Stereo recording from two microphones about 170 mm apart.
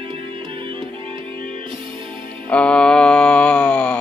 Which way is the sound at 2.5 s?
5° left (ahead or behind).